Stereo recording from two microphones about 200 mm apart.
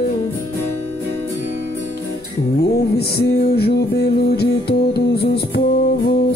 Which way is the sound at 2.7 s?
50° left (ahead or behind).